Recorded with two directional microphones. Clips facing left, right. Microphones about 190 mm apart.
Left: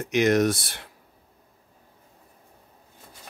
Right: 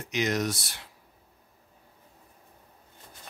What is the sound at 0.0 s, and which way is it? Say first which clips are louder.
Speech: left 8 dB; 55° left (ahead or behind).